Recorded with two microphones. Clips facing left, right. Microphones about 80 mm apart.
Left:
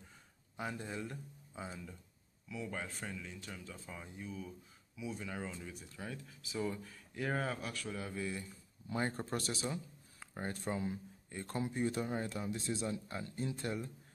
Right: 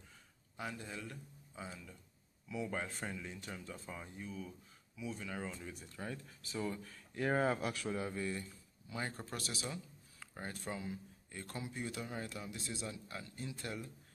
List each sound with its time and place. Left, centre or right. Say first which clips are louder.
0.6 s speech: left 3 dB; left
2.4 s speech: right 2 dB; centre
7.4 s speech: right 5 dB; centre
7.8 s speech: right 2 dB; centre
8.8 s speech: left 5 dB; left